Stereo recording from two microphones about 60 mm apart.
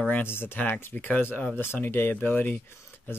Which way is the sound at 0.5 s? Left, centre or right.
Left.